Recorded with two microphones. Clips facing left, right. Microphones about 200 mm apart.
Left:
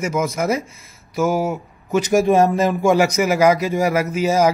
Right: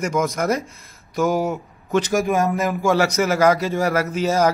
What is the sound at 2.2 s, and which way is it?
Speech, 25° left (ahead or behind).